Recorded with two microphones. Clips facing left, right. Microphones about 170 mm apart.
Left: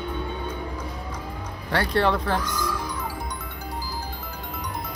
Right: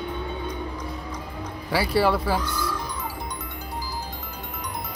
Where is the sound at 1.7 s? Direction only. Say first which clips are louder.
Right 1 dB; 5° right (ahead or behind).